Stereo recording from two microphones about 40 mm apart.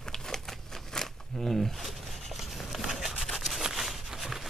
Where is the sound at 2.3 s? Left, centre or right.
Centre.